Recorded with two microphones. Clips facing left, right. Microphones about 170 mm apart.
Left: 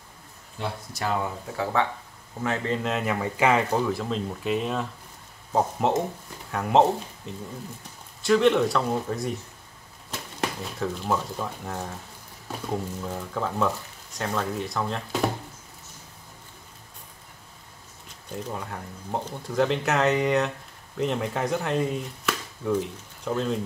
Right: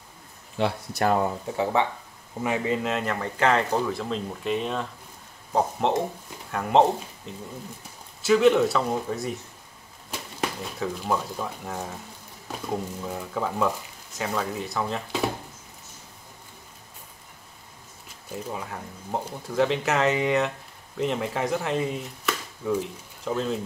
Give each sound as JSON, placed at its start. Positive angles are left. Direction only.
{"t": 0.6, "sound": "speech", "side_deg": -90}
{"t": 1.6, "sound": "speech", "side_deg": -20}
{"t": 10.4, "sound": "speech", "side_deg": 0}
{"t": 18.3, "sound": "speech", "side_deg": 0}